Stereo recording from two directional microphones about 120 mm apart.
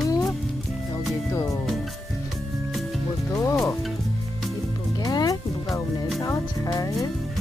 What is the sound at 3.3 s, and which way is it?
Music, 25° left (ahead or behind).